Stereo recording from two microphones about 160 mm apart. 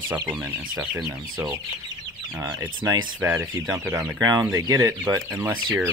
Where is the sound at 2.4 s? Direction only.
15° right (ahead or behind).